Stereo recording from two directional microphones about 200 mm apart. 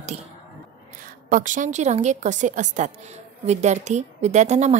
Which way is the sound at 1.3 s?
40° right (ahead or behind).